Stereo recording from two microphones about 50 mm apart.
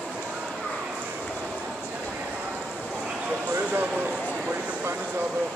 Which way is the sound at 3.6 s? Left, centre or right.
Right.